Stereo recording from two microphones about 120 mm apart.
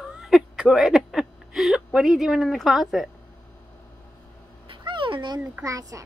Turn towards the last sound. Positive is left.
turn(degrees=-25)  # may be behind; listen again after turning